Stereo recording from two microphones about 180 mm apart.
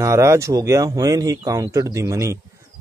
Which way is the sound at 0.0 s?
15° right (ahead or behind).